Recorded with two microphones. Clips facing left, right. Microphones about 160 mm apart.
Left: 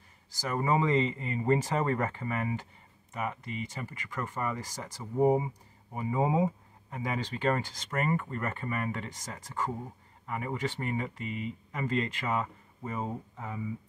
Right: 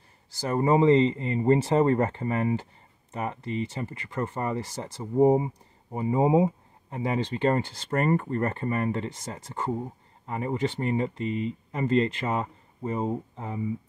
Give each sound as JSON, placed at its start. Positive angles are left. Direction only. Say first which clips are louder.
{"t": 0.4, "sound": "speech", "louder": "right 6 dB", "side_deg": -30}